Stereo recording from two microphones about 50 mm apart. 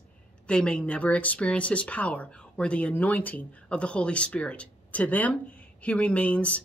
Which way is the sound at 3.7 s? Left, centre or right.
Left.